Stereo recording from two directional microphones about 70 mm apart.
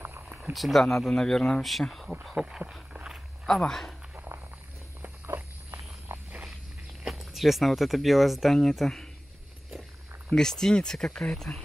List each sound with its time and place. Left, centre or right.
0.0 s a sound: right
0.4 s speech: centre
2.9 s walk: centre
3.4 s speech: centre
4.1 s walk: right
7.1 s speech: centre
10.3 s speech: centre